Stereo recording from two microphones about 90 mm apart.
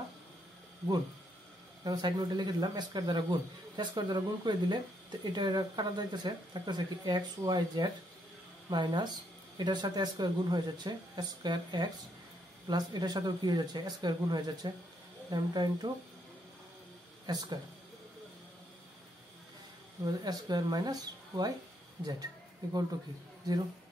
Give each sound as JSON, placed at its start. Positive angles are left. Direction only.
{"t": 1.9, "sound": "a man's voice", "side_deg": -50}
{"t": 17.3, "sound": "a man's voice", "side_deg": -50}
{"t": 20.1, "sound": "a man's voice", "side_deg": -50}